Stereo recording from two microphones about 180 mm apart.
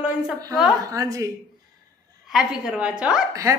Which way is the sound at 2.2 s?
5° right (ahead or behind).